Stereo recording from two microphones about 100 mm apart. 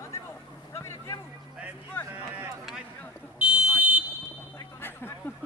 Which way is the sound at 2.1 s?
20° right (ahead or behind).